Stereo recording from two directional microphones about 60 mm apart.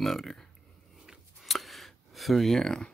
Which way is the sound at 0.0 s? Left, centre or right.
Centre.